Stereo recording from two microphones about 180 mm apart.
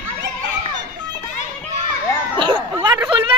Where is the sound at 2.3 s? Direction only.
25° right (ahead or behind).